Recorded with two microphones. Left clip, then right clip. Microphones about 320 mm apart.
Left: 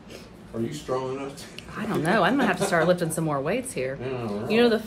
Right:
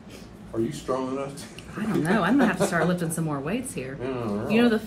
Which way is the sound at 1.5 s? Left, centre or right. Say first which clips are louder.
Right 1 dB; left.